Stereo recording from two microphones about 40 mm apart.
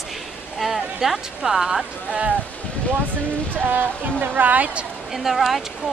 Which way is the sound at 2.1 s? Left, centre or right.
Right.